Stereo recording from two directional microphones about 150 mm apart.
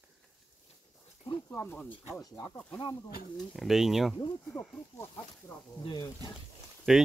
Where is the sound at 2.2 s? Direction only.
25° left (ahead or behind).